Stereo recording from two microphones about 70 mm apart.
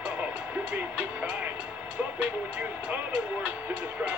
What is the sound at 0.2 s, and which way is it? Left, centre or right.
Vehicle, centre.